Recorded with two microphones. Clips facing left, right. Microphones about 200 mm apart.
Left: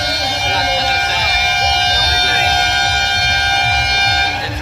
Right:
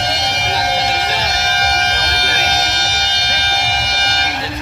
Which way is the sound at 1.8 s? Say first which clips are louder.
Left 1 dB; 40° left (ahead or behind).